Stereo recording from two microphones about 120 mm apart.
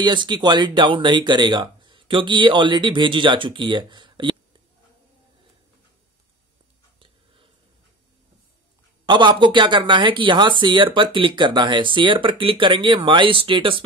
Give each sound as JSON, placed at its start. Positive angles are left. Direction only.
{"t": 0.0, "sound": "speech", "side_deg": -40}
{"t": 9.0, "sound": "speech", "side_deg": -40}